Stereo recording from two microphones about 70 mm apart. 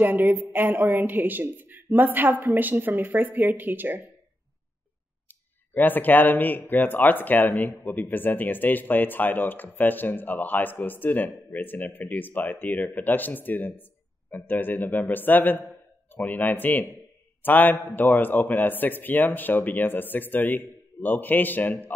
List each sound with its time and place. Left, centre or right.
0.0 s a woman's voice: right
5.3 s speech: left